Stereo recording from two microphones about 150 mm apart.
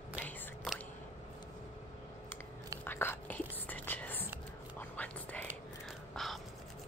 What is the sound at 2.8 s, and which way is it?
Whispering, 15° left (ahead or behind).